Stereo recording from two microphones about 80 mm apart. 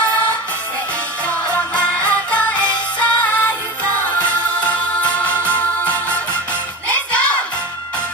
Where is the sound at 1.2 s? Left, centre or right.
Centre.